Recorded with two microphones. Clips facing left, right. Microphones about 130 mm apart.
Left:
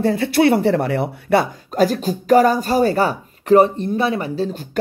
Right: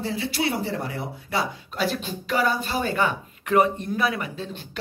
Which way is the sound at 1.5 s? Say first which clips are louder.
Left 9 dB; 45° left (ahead or behind).